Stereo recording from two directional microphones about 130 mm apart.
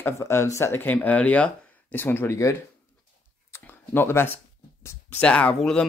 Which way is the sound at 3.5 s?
20° left (ahead or behind).